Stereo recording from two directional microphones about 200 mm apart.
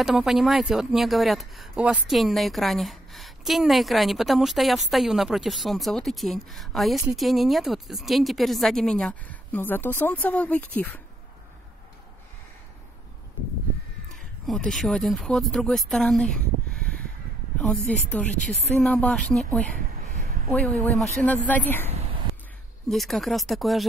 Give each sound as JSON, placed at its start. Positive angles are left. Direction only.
{"t": 0.0, "sound": "speech", "side_deg": 0}
{"t": 14.4, "sound": "speech", "side_deg": 0}
{"t": 17.6, "sound": "a woman's voice", "side_deg": 5}